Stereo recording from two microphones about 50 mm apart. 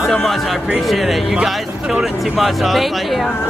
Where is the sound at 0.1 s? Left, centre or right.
Centre.